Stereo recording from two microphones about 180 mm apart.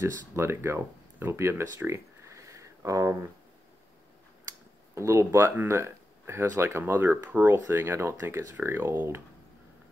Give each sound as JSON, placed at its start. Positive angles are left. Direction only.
{"t": 0.0, "sound": "speech", "side_deg": -15}
{"t": 4.9, "sound": "speech", "side_deg": -15}